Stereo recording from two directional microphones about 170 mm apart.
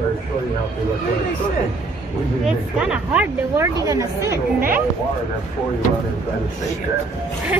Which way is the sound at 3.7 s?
20° right (ahead or behind).